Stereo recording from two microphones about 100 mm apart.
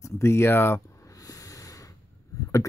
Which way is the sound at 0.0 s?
25° left (ahead or behind).